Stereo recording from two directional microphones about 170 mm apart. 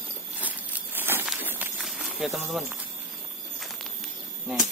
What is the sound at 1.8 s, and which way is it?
Run, centre (ahead or behind).